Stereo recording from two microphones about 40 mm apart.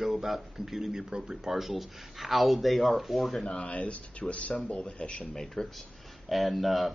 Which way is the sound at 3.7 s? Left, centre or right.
Left.